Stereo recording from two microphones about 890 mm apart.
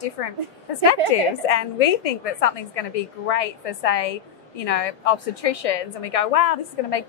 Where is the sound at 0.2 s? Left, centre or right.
Left.